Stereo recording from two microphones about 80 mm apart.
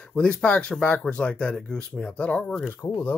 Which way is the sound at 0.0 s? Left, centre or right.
Centre.